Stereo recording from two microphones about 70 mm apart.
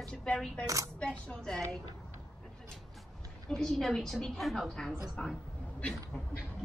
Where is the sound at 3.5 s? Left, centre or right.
Centre.